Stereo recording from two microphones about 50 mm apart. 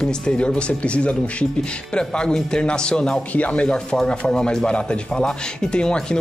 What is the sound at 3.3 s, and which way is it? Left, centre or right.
Speech, left.